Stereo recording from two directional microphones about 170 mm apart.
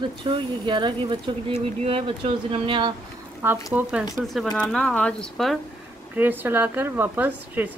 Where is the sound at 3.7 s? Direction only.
10° right (ahead or behind).